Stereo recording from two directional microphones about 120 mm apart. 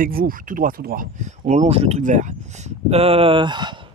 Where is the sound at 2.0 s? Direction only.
85° right.